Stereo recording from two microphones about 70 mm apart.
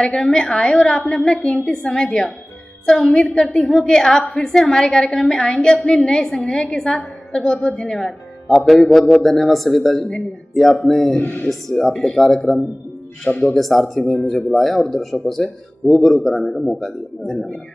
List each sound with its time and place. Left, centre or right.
0.0 s a woman's voice: centre
11.1 s speech: left
11.4 s speech: centre
13.3 s a woman's voice: centre
13.6 s speech: centre